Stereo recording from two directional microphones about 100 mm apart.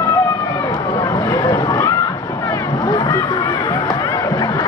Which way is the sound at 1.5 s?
35° left (ahead or behind).